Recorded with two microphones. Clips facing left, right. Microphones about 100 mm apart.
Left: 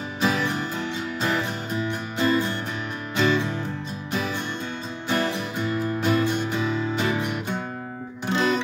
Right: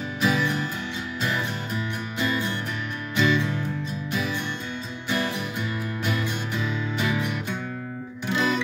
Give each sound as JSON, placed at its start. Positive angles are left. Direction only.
{"t": 0.2, "sound": "music", "side_deg": 35}